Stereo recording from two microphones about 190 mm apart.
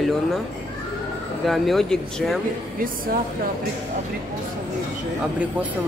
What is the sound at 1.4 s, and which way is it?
Speech, centre (ahead or behind).